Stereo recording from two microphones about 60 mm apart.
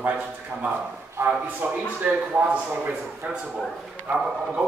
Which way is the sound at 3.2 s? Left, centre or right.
Right.